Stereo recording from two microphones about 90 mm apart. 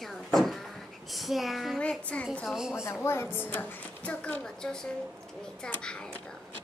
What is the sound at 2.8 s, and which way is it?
A woman's voice, 30° left (ahead or behind).